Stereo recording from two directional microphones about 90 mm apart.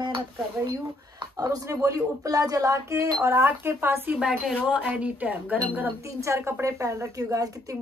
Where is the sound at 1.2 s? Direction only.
45° right (ahead or behind); by 4.2 s 25° right (ahead or behind).